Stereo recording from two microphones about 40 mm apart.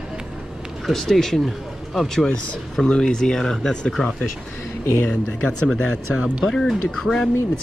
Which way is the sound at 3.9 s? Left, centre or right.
Centre.